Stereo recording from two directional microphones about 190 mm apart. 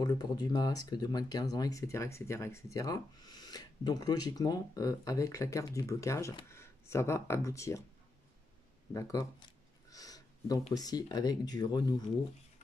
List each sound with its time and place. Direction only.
0.0 s speech: 20° left (ahead or behind)
8.9 s speech: 15° left (ahead or behind)
9.8 s a sound: 20° left (ahead or behind)
10.7 s speech: 20° left (ahead or behind)